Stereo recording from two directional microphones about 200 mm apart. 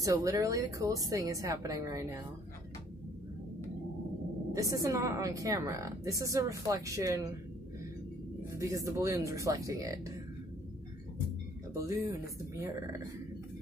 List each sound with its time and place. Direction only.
0.0 s a woman's voice: 15° right (ahead or behind)
4.5 s a woman's voice: 15° right (ahead or behind)
8.5 s a woman's voice: 15° right (ahead or behind)
11.7 s a woman's voice: 15° right (ahead or behind)